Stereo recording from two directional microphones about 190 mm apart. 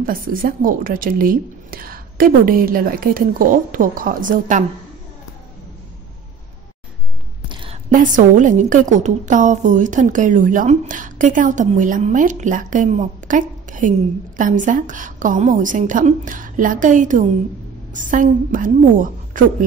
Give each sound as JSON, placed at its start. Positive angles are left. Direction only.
{"t": 0.0, "sound": "a woman's voice", "side_deg": -50}
{"t": 7.4, "sound": "a sound", "side_deg": -25}
{"t": 7.9, "sound": "a woman's voice", "side_deg": -45}